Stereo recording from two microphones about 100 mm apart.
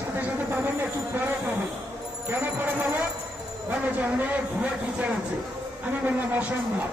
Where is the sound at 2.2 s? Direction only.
20° right (ahead or behind).